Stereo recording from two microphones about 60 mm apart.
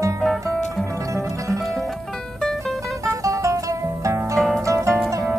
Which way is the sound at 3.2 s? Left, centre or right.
Right.